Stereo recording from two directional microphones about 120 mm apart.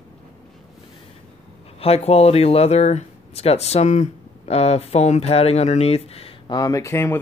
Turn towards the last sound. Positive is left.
turn(degrees=20)  # may be behind; listen again after turning